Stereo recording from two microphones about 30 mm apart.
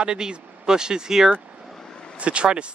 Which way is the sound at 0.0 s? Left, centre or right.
Right.